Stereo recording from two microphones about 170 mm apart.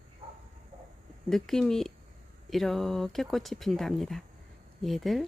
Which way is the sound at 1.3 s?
Centre (ahead or behind).